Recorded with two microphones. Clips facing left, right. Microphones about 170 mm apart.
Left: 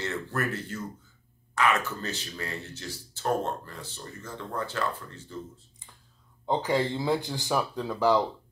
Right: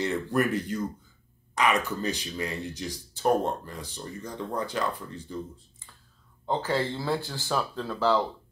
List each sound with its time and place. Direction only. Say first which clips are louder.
0.0 s speech: right 5 dB; 15° right (ahead or behind)
6.4 s speech: left 1 dB; 15° left (ahead or behind)